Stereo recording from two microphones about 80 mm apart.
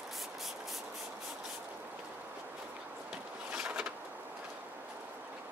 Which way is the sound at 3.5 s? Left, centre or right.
Centre.